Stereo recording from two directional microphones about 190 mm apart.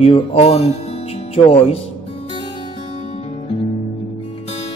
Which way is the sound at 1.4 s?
30° left (ahead or behind).